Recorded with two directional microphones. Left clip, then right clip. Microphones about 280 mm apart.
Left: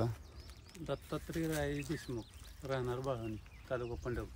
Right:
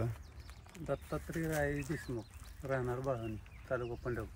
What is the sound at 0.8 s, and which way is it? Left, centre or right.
Speech, centre.